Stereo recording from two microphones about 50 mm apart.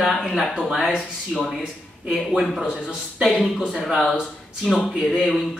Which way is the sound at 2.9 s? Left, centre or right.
Centre.